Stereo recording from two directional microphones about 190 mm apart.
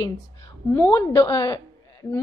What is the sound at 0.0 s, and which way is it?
A woman's voice, 20° left (ahead or behind).